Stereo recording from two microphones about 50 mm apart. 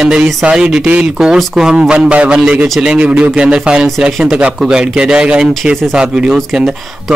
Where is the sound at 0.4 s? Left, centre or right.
Right.